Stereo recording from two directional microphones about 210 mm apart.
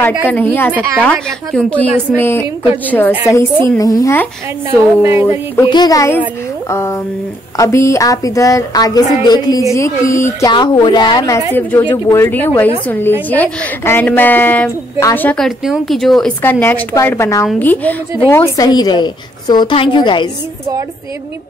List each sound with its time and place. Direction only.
0.3 s speech: 10° left (ahead or behind)
4.7 s speech: 10° right (ahead or behind)
5.6 s a woman's voice: 20° left (ahead or behind)